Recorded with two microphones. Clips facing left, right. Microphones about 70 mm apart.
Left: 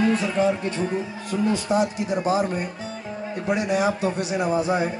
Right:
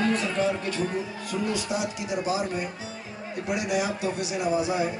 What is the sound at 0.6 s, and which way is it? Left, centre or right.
Speech, left.